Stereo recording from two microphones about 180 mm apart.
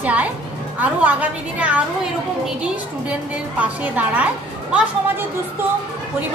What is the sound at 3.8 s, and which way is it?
Speech, 10° right (ahead or behind).